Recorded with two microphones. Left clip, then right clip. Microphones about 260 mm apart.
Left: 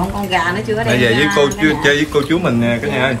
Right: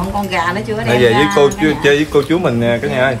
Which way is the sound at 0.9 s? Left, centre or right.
Right.